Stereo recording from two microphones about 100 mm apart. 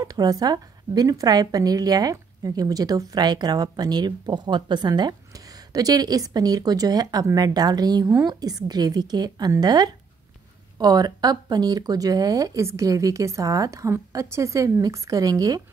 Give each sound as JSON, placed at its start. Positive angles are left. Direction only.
{"t": 0.0, "sound": "a woman's voice", "side_deg": -40}